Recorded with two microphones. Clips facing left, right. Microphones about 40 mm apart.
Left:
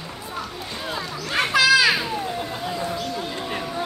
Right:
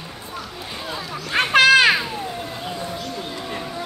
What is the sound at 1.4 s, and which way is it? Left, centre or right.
Children playing, right.